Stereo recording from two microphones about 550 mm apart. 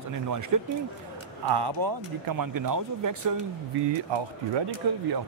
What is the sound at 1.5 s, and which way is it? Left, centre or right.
Speech, right.